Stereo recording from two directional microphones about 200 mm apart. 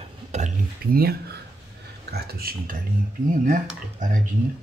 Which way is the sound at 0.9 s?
50° right (ahead or behind).